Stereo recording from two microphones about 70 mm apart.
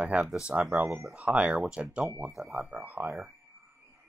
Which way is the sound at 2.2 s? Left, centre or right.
Centre.